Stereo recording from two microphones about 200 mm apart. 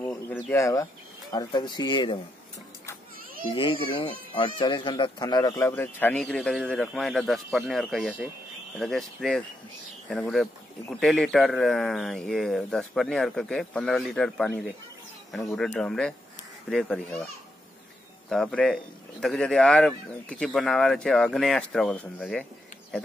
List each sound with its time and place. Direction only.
0.0 s speech: 10° left (ahead or behind)
4.0 s speech: 25° left (ahead or behind); by 17.3 s 5° left (ahead or behind)
18.3 s speech: 5° left (ahead or behind)